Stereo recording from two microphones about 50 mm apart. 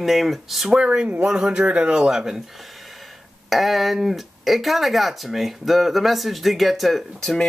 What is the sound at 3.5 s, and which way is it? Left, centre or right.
Speech, centre.